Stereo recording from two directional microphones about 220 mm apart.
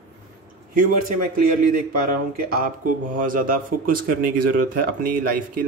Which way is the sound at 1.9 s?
40° right (ahead or behind).